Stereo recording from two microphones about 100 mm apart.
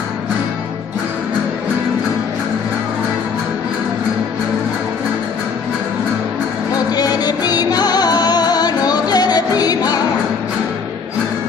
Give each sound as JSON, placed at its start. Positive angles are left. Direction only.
{"t": 6.9, "sound": "music", "side_deg": 40}